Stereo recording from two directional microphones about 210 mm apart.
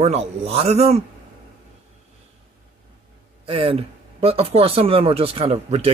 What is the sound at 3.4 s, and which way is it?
Speech, 25° right (ahead or behind).